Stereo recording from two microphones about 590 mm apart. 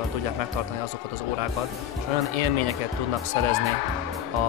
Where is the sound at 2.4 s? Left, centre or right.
Right.